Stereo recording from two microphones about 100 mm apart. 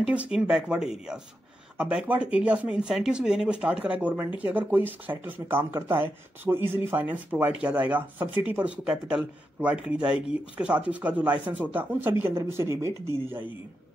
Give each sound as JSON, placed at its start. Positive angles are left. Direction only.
{"t": 0.0, "sound": "speech", "side_deg": -10}